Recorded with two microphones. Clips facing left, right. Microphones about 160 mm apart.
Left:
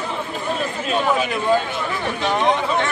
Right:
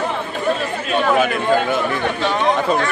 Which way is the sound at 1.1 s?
60° right (ahead or behind).